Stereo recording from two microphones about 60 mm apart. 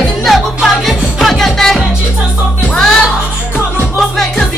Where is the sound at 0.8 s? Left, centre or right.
Centre.